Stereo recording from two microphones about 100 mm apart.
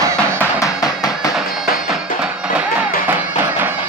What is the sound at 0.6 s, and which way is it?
Music, 40° left (ahead or behind).